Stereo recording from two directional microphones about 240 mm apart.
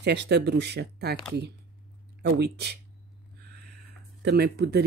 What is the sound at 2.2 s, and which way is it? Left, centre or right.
Speech, right.